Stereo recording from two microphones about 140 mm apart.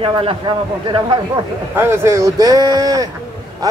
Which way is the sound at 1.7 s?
15° right (ahead or behind).